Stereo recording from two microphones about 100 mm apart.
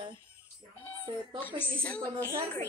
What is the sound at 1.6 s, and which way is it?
Speech, 15° left (ahead or behind).